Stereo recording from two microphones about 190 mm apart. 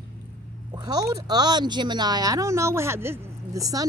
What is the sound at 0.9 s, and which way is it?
Speech, 20° right (ahead or behind).